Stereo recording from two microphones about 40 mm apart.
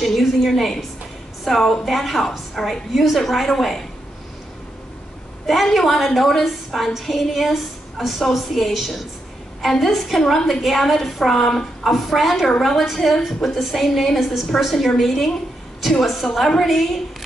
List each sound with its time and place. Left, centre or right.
0.0 s a woman's voice: centre
5.5 s a woman's voice: centre